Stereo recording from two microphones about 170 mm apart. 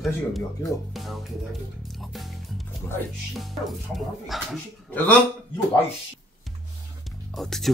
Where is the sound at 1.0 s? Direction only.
Centre (ahead or behind).